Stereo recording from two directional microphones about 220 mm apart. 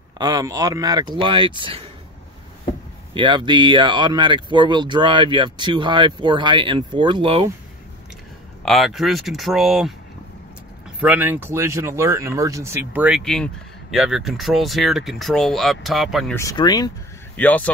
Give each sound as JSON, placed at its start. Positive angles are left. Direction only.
{"t": 0.2, "sound": "speech", "side_deg": -15}
{"t": 3.2, "sound": "speech", "side_deg": -20}
{"t": 8.6, "sound": "speech", "side_deg": 0}
{"t": 11.0, "sound": "speech", "side_deg": -10}
{"t": 16.3, "sound": "speech", "side_deg": 15}
{"t": 17.4, "sound": "speech", "side_deg": 5}